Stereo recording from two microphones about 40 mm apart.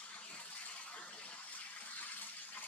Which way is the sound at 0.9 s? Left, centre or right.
Left.